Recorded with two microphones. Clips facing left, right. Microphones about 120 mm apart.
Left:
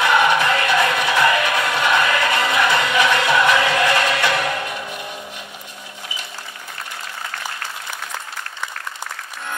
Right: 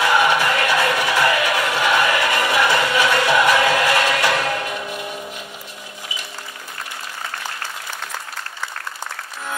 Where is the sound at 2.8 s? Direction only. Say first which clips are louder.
Even; 20° left (ahead or behind).